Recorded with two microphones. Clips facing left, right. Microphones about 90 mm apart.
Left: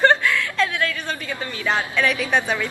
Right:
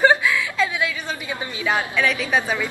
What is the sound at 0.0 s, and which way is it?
Chuckle, 5° right (ahead or behind).